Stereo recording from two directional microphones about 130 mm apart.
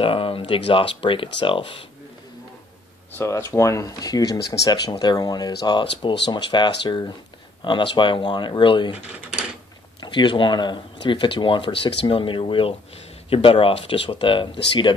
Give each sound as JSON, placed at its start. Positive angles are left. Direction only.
{"t": 0.0, "sound": "speech", "side_deg": 45}
{"t": 3.1, "sound": "speech", "side_deg": 20}
{"t": 9.9, "sound": "speech", "side_deg": 35}